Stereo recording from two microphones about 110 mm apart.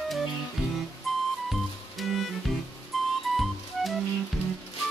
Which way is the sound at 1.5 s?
Centre (ahead or behind).